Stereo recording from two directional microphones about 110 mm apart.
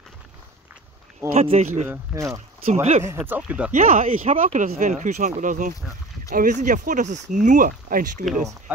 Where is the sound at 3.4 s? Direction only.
10° right (ahead or behind).